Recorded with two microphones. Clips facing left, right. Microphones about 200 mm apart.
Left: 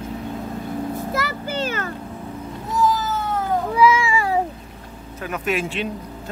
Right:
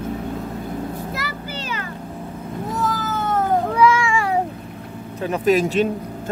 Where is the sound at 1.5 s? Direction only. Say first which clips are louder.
Left 5 dB; 50° left (ahead or behind).